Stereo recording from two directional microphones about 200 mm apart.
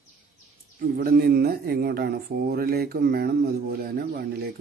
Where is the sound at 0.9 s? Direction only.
50° right (ahead or behind).